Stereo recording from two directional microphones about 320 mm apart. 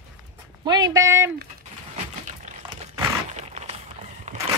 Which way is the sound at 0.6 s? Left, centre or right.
Centre.